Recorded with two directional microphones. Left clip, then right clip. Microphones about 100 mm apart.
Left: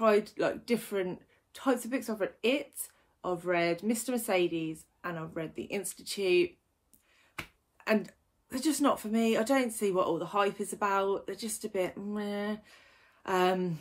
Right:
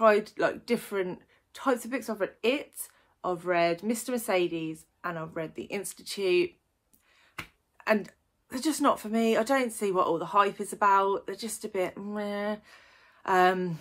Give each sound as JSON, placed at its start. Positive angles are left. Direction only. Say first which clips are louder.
{"t": 0.0, "sound": "a woman's voice", "louder": "right 4 dB", "side_deg": -30}
{"t": 5.1, "sound": "speech", "louder": "right 3 dB", "side_deg": -15}
{"t": 5.4, "sound": "speech", "louder": "right 2 dB", "side_deg": -35}
{"t": 7.4, "sound": "a sound", "louder": "right 1 dB", "side_deg": 15}
{"t": 7.7, "sound": "a woman's voice", "louder": "right 3 dB", "side_deg": -35}